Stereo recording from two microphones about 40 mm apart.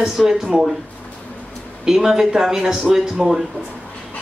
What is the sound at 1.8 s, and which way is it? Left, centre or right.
Speech, centre.